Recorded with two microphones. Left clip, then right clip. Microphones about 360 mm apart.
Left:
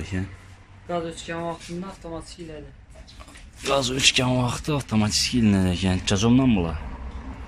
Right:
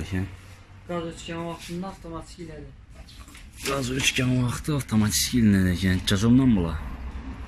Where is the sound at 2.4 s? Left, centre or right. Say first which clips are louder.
Left 2 dB; left.